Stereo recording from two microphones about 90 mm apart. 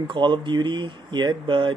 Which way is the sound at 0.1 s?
65° right (ahead or behind).